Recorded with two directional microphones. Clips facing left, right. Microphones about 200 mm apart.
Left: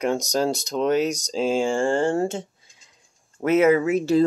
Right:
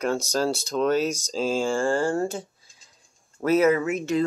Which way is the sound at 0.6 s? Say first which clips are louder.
Left 1 dB; 15° left (ahead or behind).